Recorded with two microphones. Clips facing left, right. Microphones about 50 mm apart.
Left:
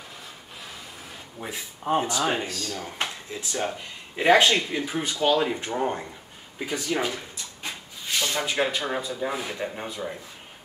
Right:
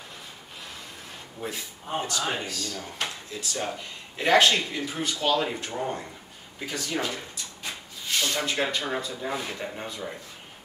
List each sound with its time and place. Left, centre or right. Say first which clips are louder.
1.4 s speech: right 1 dB; centre
2.0 s speech: left 3 dB; left
5.6 s speech: left 4 dB; left
6.6 s speech: left 3 dB; centre
8.2 s speech: left 2 dB; centre